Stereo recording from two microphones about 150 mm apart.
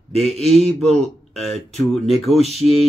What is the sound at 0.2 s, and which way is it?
Speech, centre (ahead or behind).